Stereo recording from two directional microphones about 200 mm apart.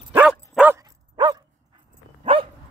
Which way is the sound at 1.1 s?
25° right (ahead or behind).